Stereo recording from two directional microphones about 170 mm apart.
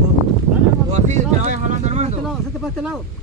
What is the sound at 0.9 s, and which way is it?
Speech, 45° right (ahead or behind).